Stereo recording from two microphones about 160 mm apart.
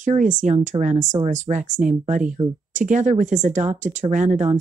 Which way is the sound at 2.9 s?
50° right (ahead or behind).